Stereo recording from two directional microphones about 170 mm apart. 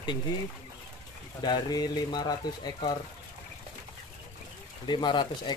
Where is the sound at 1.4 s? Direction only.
25° left (ahead or behind).